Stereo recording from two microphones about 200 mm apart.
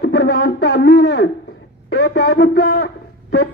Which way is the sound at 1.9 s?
55° left (ahead or behind).